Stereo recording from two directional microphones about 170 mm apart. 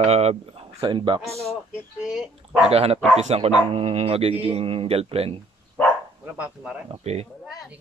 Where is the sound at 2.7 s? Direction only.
35° right (ahead or behind).